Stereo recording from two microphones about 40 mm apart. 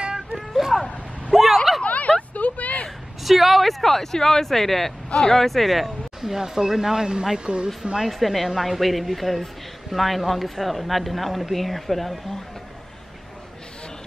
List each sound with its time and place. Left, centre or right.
0.0 s a sound: right
0.5 s vehicle: centre
1.8 s a sound: left
2.3 s vehicle: left
3.3 s speech: centre
5.1 s speech: centre
5.4 s speech: centre
8.0 s speech: centre